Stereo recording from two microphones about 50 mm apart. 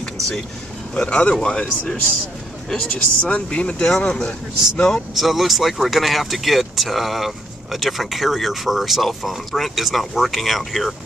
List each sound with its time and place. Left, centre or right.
0.9 s speech: left
2.9 s speech: left
5.1 s speech: centre